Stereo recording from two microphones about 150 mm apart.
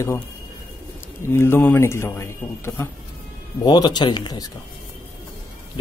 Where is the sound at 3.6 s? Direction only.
30° left (ahead or behind).